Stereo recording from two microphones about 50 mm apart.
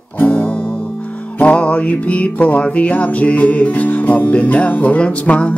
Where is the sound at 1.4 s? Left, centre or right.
Left.